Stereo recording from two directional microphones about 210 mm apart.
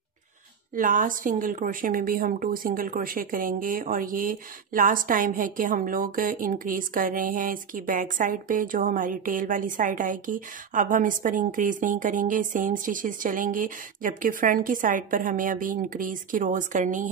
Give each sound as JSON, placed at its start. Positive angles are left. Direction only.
{"t": 0.7, "sound": "a woman's voice", "side_deg": -40}